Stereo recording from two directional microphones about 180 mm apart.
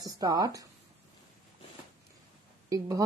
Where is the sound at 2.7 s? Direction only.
20° right (ahead or behind).